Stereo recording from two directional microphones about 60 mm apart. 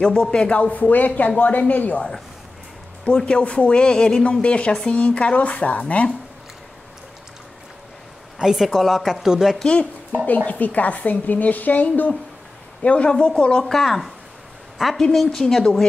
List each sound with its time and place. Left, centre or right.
0.0 s speech: centre
3.1 s a woman's voice: centre
8.4 s speech: centre
10.2 s a woman's voice: left; by 14.9 s centre
15.4 s a woman's voice: centre